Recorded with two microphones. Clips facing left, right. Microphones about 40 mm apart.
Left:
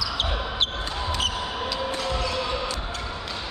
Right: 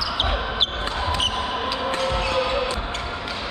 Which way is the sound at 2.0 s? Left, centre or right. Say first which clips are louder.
Right 5 dB; right.